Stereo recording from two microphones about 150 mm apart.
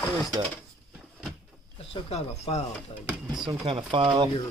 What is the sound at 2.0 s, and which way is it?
Speech, 45° left (ahead or behind).